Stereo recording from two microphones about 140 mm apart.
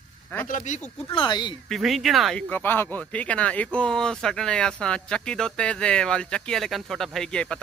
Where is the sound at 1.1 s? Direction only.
35° left (ahead or behind).